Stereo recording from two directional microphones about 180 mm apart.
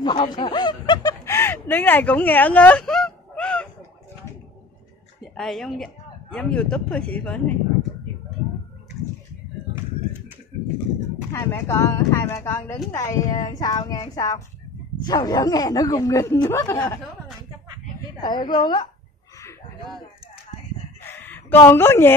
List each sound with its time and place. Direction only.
0.0 s speech: 25° left (ahead or behind); by 3.6 s 5° left (ahead or behind)
5.2 s speech: centre (ahead or behind)
11.3 s speech: 15° left (ahead or behind)
18.2 s speech: 25° left (ahead or behind)
21.0 s a sound: 10° left (ahead or behind)
21.6 s speech: 15° left (ahead or behind)